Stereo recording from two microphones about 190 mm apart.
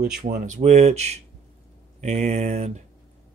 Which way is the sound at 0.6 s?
35° right (ahead or behind).